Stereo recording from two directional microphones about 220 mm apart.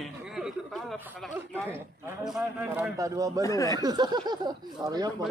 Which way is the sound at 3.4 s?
15° left (ahead or behind).